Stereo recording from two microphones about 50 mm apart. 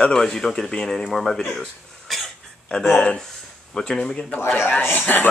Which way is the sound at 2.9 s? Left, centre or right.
Centre.